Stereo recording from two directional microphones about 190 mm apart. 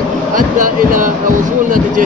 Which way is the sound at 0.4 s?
45° right (ahead or behind).